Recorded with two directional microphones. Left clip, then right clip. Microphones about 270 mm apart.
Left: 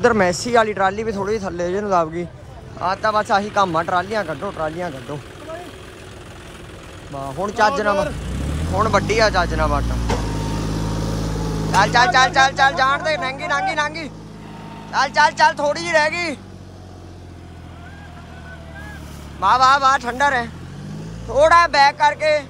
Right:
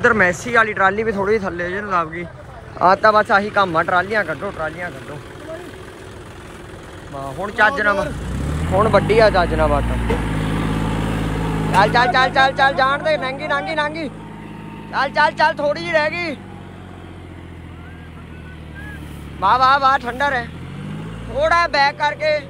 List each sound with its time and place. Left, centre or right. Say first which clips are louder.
0.0 s speech: right 1 dB; centre
4.3 s speech: right 1 dB; centre
4.6 s speech: left 1 dB; left
4.9 s vehicle: left 1 dB; centre
7.2 s speech: right 1 dB; left
7.9 s speech: even; centre
11.0 s vehicle: right 3 dB; right
11.7 s speech: even; centre
19.4 s speech: even; centre